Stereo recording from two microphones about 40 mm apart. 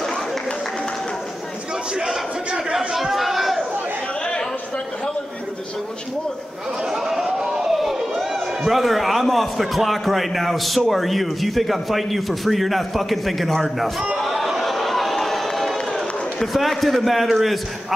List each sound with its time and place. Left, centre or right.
2.0 s speech: centre
3.0 s chatter: centre
6.9 s a sound: centre
7.2 s a sound: right
7.7 s crowd: centre
8.3 s a man's voice: centre
14.1 s chatter: centre
16.5 s a man's voice: centre